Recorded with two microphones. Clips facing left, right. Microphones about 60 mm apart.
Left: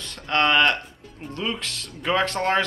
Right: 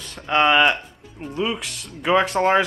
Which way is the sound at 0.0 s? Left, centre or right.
Centre.